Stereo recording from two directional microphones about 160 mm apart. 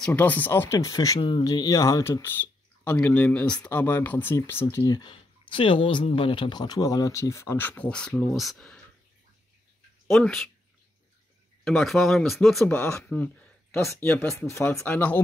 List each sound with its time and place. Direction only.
0.0 s speech: 10° left (ahead or behind)
10.0 s speech: centre (ahead or behind)
11.6 s speech: centre (ahead or behind)